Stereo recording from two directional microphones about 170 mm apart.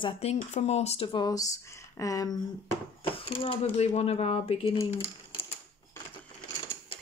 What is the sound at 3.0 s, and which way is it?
Speech, 30° left (ahead or behind).